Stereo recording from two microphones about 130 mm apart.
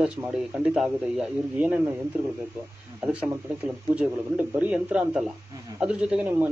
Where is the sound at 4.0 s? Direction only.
10° right (ahead or behind).